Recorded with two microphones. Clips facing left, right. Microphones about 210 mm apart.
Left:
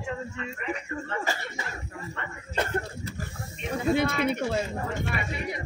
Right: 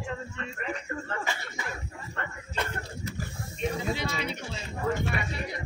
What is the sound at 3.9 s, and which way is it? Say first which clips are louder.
Speech: left 7 dB; 55° left (ahead or behind).